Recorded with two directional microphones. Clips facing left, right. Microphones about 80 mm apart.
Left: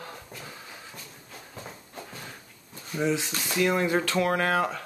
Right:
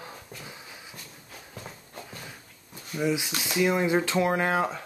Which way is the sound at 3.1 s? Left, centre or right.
Centre.